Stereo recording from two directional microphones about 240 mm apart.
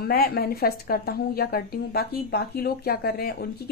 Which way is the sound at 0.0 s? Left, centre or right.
Left.